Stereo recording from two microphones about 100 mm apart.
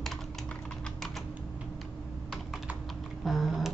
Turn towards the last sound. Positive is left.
turn(degrees=0)  # may be behind; listen again after turning